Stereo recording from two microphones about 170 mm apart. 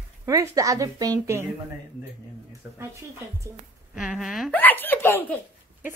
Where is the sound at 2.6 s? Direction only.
15° right (ahead or behind).